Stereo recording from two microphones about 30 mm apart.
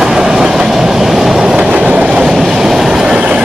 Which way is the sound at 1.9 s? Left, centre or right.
Right.